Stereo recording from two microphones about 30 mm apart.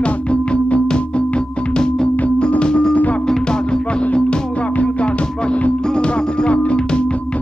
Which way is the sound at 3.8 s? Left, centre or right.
Left.